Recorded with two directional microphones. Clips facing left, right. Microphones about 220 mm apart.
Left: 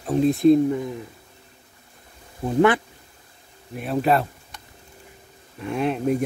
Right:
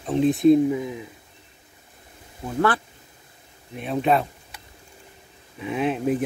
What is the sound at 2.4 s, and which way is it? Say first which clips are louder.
Speech: left 5 dB; 20° left (ahead or behind).